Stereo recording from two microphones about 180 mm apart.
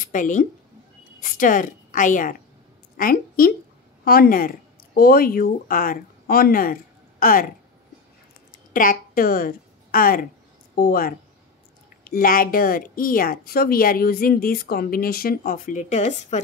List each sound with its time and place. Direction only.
0.0 s a woman's voice: 45° left (ahead or behind)
8.7 s a woman's voice: 50° left (ahead or behind)